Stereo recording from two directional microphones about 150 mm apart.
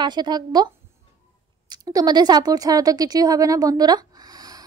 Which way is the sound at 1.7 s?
25° right (ahead or behind).